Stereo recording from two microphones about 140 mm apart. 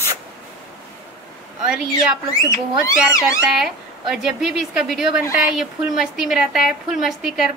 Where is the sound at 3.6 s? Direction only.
5° right (ahead or behind).